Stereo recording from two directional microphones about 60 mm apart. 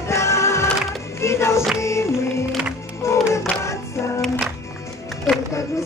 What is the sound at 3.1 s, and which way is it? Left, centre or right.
Music, left.